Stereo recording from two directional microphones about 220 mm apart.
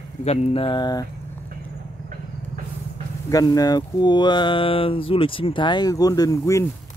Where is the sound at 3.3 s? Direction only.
15° left (ahead or behind).